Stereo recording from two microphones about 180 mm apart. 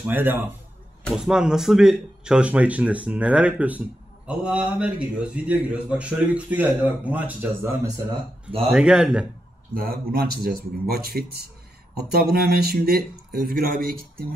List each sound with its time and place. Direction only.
0.0 s a man's voice: 10° right (ahead or behind)
8.5 s speech: 35° right (ahead or behind)
8.7 s a man's voice: 5° right (ahead or behind)
9.8 s speech: 55° right (ahead or behind)